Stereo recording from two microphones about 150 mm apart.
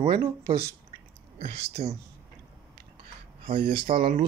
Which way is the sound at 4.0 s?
90° right.